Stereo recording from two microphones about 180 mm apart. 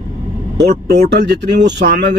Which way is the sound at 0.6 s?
65° right (ahead or behind).